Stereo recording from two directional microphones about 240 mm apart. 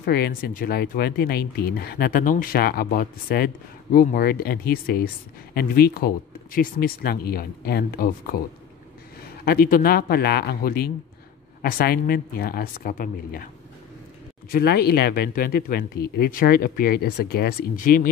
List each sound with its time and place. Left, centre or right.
0.0 s speech: left
9.4 s speech: left
14.5 s speech: left